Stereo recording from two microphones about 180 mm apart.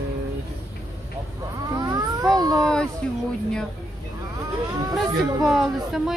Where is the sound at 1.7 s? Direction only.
20° right (ahead or behind).